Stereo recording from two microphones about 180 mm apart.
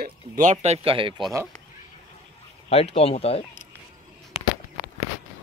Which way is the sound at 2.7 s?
35° left (ahead or behind).